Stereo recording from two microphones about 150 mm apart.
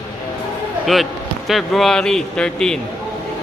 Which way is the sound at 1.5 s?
Centre (ahead or behind).